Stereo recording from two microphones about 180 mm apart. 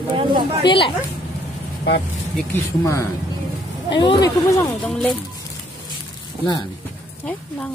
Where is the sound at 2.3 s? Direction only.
10° left (ahead or behind).